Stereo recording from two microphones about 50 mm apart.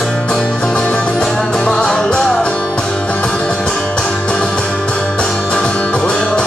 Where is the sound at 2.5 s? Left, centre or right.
Left.